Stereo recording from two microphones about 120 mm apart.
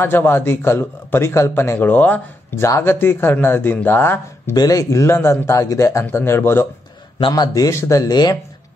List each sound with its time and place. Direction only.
0.0 s a man's voice: 20° left (ahead or behind)
4.6 s a man's voice: 30° left (ahead or behind)
7.2 s speech: 40° left (ahead or behind)